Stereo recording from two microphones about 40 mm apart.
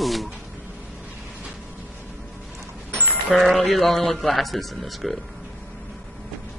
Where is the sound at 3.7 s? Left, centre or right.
Centre.